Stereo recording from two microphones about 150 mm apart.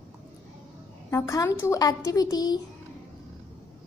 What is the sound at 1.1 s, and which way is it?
A woman's voice, 20° left (ahead or behind).